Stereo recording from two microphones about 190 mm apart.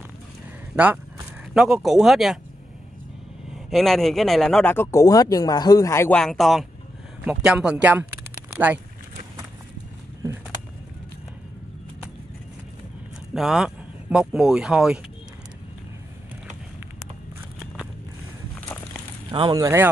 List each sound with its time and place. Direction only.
1.5 s a man's voice: centre (ahead or behind)
3.5 s a man's voice: centre (ahead or behind)
13.3 s speech: centre (ahead or behind)
19.3 s speech: 20° right (ahead or behind)